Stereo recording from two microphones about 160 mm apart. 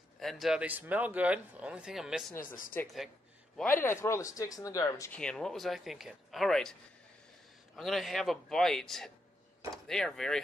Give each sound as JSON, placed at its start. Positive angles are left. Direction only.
{"t": 0.2, "sound": "speech", "side_deg": 0}
{"t": 2.4, "sound": "speech", "side_deg": 60}
{"t": 3.8, "sound": "speech", "side_deg": 15}
{"t": 5.1, "sound": "speech", "side_deg": 5}